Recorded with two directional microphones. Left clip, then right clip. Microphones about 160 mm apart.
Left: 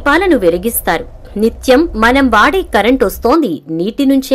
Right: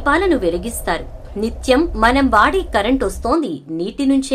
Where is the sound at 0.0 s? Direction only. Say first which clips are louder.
Left 5 dB; 40° left (ahead or behind).